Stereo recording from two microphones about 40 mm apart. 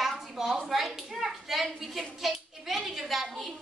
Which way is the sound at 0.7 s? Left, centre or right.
Centre.